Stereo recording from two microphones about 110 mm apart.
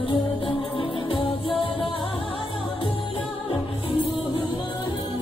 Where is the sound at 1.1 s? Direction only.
50° left (ahead or behind).